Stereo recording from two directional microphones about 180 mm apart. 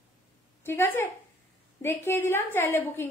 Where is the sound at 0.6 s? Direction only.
10° left (ahead or behind).